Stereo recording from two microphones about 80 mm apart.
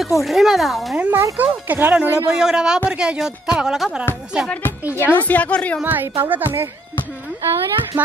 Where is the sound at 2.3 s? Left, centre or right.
Centre.